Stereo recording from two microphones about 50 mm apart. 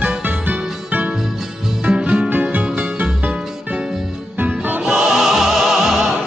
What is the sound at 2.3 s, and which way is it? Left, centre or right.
Music, right.